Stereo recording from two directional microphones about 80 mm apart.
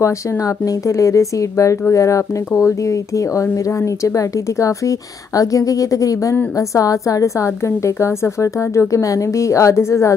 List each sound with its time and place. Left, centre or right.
0.7 s a woman's voice: left